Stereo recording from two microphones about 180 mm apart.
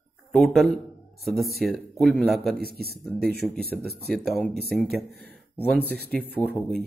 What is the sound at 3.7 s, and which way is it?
Speech, 60° right (ahead or behind).